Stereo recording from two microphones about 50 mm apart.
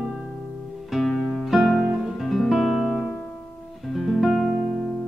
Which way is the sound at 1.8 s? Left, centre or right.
Centre.